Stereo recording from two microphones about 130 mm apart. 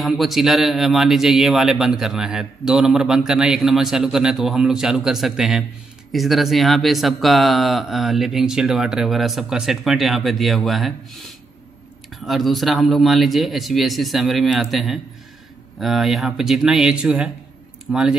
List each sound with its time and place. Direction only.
0.0 s a man's voice: centre (ahead or behind)